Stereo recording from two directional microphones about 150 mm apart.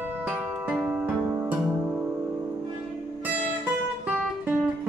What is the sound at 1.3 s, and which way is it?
Music, 20° right (ahead or behind).